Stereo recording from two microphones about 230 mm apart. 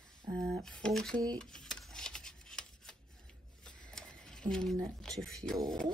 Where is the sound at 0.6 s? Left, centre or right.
Centre.